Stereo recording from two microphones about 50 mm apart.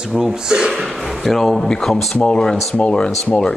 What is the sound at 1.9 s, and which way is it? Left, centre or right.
Speech, centre.